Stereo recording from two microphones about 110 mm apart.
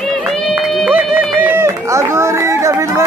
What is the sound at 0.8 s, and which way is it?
Run, 20° right (ahead or behind).